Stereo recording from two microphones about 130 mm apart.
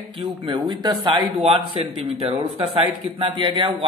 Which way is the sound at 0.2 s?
35° right (ahead or behind).